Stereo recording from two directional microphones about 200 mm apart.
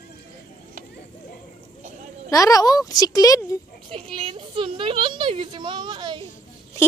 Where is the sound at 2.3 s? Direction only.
15° left (ahead or behind).